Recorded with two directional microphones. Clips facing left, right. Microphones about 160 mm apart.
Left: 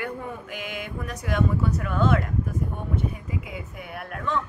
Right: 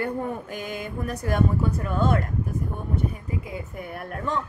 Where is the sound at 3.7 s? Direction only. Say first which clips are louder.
Right 2 dB; 40° right (ahead or behind).